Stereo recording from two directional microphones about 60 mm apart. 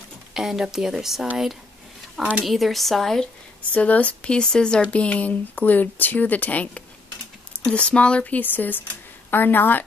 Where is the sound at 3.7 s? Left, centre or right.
Left.